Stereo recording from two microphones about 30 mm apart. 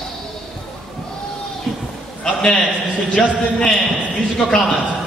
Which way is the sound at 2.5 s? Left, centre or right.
Left.